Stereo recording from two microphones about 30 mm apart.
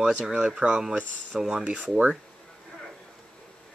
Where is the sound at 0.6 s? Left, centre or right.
Right.